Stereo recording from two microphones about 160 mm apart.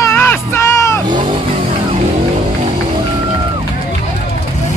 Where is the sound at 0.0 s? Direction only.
15° left (ahead or behind).